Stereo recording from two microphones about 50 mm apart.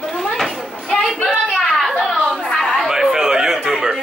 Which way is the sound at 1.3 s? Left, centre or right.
Centre.